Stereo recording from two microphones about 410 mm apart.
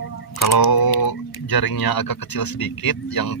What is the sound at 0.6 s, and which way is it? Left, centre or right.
Speech, left.